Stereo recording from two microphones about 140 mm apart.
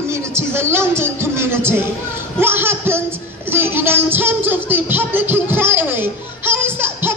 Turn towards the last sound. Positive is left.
turn(degrees=-15)  # may be behind; listen again after turning